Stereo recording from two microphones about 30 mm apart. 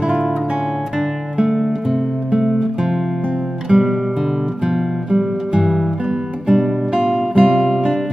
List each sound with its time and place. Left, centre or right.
1.4 s music: centre